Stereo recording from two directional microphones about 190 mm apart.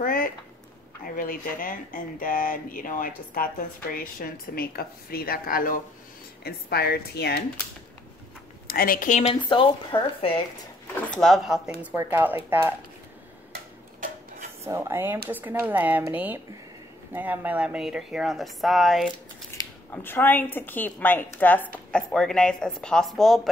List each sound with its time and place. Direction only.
0.0 s speech: 50° left (ahead or behind)
8.6 s a woman's voice: 50° left (ahead or behind); by 10.4 s 30° left (ahead or behind)
11.1 s a woman's voice: centre (ahead or behind)
14.6 s a woman's voice: 15° right (ahead or behind)